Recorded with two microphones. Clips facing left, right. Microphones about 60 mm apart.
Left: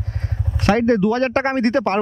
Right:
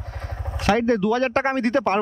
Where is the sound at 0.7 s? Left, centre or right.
Centre.